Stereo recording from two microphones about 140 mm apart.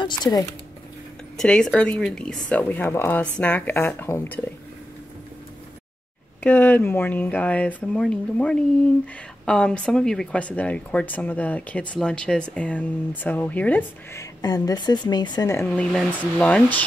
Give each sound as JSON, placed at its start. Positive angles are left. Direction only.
{"t": 0.0, "sound": "speech", "side_deg": 30}
{"t": 1.3, "sound": "a woman's voice", "side_deg": 5}
{"t": 6.4, "sound": "speech", "side_deg": 15}
{"t": 14.4, "sound": "a woman's voice", "side_deg": 30}
{"t": 15.5, "sound": "speech", "side_deg": 10}